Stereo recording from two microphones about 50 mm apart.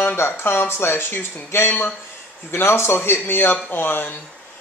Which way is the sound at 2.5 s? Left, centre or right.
Left.